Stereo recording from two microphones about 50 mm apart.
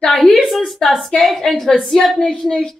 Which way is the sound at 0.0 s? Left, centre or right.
Centre.